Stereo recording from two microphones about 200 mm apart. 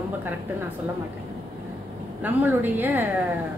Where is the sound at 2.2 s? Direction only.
10° right (ahead or behind).